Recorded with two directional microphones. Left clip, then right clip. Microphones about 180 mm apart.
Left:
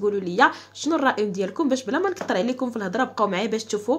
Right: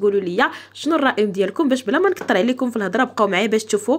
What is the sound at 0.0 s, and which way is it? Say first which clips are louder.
Speech: right 2 dB; 15° right (ahead or behind).